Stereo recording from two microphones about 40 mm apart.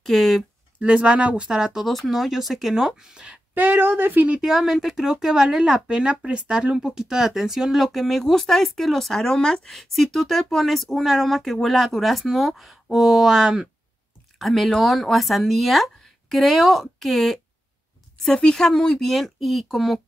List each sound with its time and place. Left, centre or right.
0.0 s speech: centre
0.7 s speech: right
1.9 s speech: centre
3.5 s speech: right
4.4 s speech: centre
14.4 s speech: centre
18.1 s speech: centre